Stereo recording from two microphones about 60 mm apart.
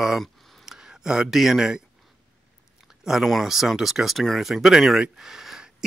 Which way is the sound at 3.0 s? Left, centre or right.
Centre.